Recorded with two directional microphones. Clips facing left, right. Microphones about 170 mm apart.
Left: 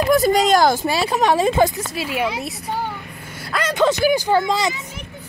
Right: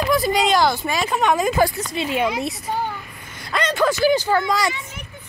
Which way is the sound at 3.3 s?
5° left (ahead or behind).